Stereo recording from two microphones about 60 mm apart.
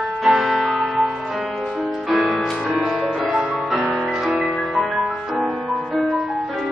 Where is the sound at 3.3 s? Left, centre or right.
Centre.